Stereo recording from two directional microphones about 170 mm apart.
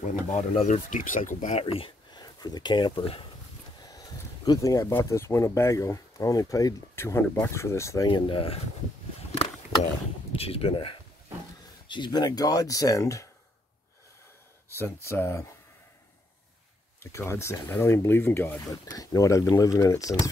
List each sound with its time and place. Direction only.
0.0 s speech: 45° left (ahead or behind)
4.5 s speech: 20° left (ahead or behind)
8.1 s speech: 30° left (ahead or behind)
10.3 s speech: 35° left (ahead or behind); by 13.3 s 20° left (ahead or behind)
14.8 s speech: 15° left (ahead or behind)
17.0 s speech: 15° left (ahead or behind)